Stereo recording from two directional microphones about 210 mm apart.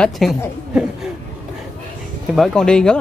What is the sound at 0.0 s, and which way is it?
Speech, centre (ahead or behind).